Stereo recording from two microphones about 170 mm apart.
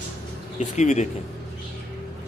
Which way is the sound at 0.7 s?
45° left (ahead or behind).